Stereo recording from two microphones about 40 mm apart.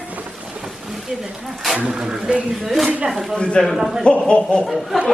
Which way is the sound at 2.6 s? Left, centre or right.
Centre.